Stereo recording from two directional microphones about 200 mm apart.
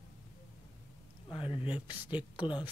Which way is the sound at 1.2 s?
25° left (ahead or behind).